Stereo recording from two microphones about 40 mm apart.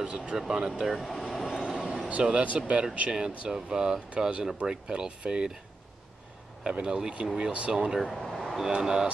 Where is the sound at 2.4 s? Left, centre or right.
Right.